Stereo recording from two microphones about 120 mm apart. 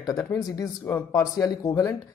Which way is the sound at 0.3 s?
30° left (ahead or behind).